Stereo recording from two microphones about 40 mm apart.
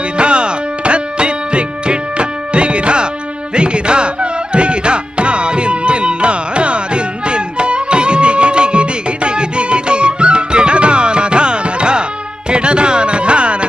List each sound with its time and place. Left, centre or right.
0.2 s music: right